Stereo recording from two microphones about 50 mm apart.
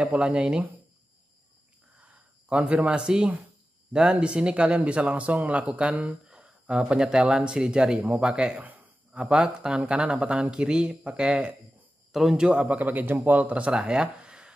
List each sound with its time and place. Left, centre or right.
0.1 s speech: right
2.0 s a sound: right
3.9 s speech: right
8.5 s a sound: right
9.1 s speech: centre
12.1 s a man's voice: centre
12.4 s speech: centre
12.6 s a man's voice: right
13.8 s a sound: centre